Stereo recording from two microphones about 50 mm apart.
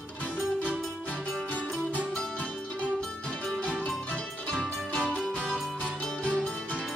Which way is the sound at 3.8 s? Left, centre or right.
Centre.